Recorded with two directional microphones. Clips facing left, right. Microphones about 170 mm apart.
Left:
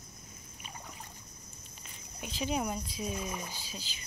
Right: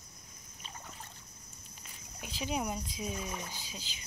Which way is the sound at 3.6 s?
15° right (ahead or behind).